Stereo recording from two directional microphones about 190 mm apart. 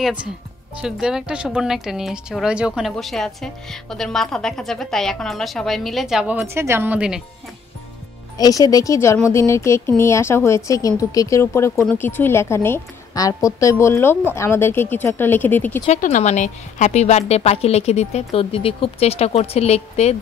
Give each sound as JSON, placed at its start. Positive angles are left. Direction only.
{"t": 0.0, "sound": "a woman's voice", "side_deg": -5}
{"t": 8.4, "sound": "a woman's voice", "side_deg": 20}
{"t": 16.0, "sound": "a woman's voice", "side_deg": 40}